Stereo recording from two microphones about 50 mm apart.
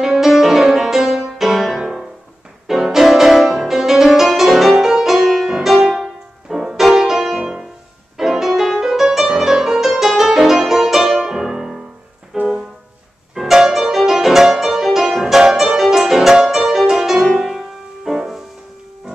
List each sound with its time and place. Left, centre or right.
0.0 s music: centre
13.3 s music: centre